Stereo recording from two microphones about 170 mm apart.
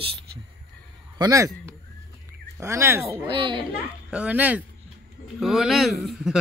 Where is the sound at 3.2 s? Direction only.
30° right (ahead or behind).